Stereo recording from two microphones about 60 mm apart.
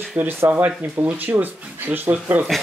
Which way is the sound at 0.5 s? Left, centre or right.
Right.